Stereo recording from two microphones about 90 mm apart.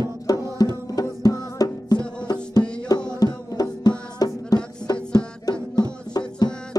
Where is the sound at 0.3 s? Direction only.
45° left (ahead or behind).